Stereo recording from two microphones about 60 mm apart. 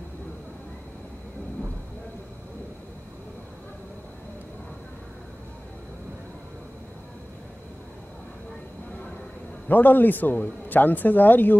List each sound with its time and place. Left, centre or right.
9.7 s a man's voice: left